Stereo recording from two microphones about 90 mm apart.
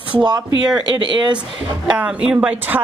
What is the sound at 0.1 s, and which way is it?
A woman's voice, 55° right (ahead or behind).